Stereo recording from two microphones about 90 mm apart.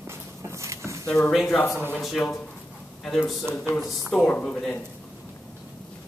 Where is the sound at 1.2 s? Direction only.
Centre (ahead or behind).